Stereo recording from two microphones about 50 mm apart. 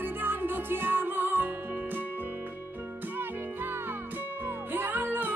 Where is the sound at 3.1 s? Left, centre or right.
Right.